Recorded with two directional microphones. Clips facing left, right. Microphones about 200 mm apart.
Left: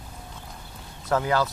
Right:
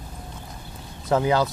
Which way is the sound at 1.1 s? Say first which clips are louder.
Right 3 dB; 20° right (ahead or behind).